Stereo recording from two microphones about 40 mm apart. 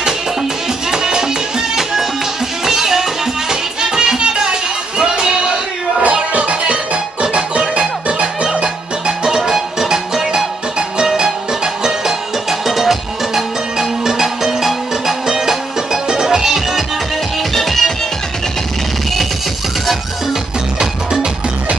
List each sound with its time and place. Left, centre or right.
0.9 s music: centre
2.6 s music: centre
17.6 s music: centre
20.8 s music: centre